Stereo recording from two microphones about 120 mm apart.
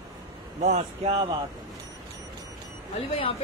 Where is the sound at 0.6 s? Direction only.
70° right (ahead or behind).